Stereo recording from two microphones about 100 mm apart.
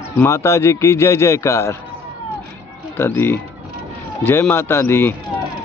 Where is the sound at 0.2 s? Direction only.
30° left (ahead or behind).